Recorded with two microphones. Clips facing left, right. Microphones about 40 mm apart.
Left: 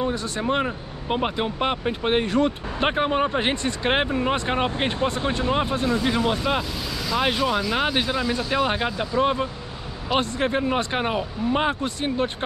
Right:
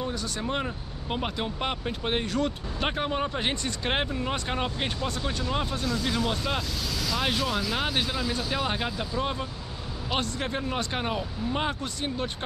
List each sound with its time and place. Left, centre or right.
0.0 s speech: left